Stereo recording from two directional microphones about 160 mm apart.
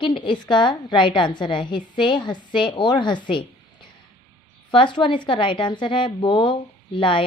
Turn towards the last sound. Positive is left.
turn(degrees=30)  # may be behind; listen again after turning